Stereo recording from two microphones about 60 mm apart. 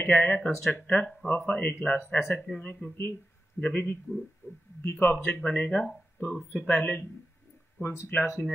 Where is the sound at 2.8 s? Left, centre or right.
Left.